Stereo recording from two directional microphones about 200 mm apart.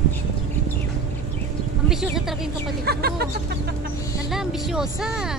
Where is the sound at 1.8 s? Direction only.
Centre (ahead or behind).